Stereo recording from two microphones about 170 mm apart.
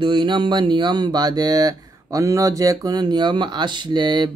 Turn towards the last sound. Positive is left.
turn(degrees=-25)  # may be behind; listen again after turning